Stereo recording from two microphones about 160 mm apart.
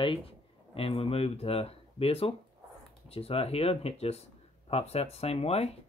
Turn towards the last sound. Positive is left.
turn(degrees=40)  # may be behind; listen again after turning